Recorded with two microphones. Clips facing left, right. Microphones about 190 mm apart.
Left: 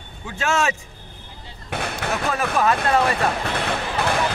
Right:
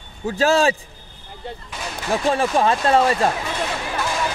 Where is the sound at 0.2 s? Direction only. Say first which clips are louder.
Right 6 dB; 35° right (ahead or behind).